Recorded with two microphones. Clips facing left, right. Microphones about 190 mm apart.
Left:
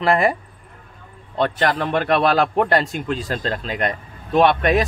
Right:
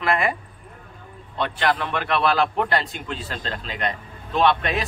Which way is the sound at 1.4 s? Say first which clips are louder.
Left 4 dB; 45° left (ahead or behind).